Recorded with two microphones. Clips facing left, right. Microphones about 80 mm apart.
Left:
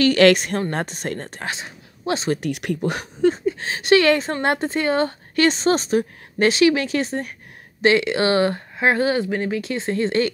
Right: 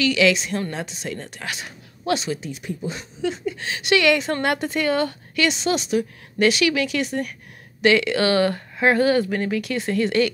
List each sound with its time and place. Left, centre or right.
0.0 s a woman's voice: left
2.2 s speech: left
3.2 s a woman's voice: left